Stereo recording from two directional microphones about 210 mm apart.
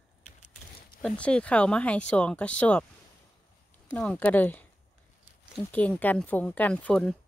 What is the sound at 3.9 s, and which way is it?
Speech, 5° left (ahead or behind).